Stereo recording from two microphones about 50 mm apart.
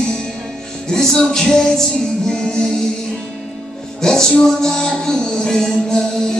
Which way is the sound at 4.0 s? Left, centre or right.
Centre.